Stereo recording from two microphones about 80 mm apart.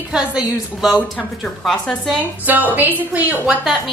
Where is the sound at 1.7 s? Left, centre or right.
Centre.